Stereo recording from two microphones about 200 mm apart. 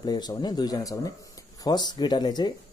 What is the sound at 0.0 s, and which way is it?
Speech, 20° left (ahead or behind).